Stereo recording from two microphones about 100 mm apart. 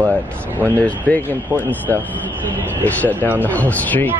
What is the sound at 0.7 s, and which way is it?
Speech, 15° left (ahead or behind).